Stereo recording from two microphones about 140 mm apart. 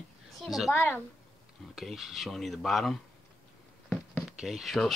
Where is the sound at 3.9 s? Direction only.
10° left (ahead or behind).